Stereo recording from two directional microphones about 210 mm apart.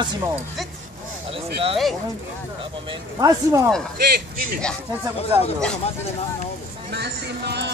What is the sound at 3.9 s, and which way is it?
Speech, 45° right (ahead or behind).